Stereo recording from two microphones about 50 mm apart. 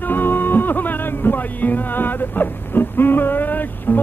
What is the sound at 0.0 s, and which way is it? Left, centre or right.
Music, left.